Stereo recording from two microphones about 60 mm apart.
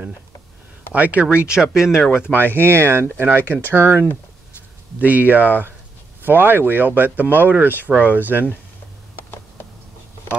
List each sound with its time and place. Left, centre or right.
0.9 s speech: right; by 2.0 s centre
2.0 s speech: left
2.3 s speech: right
5.0 s speech: right